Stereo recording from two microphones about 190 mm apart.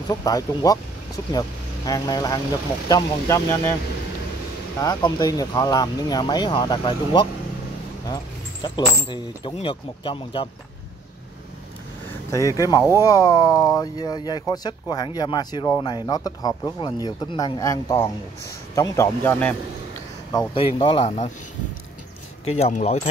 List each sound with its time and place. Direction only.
0.1 s speech: 20° left (ahead or behind)
4.7 s speech: 20° left (ahead or behind)
8.6 s speech: 25° left (ahead or behind)
12.3 s speech: 15° left (ahead or behind)
20.3 s speech: 30° left (ahead or behind)
22.4 s speech: 35° left (ahead or behind)